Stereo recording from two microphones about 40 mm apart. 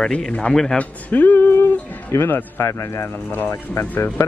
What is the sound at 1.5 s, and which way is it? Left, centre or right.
Music, left.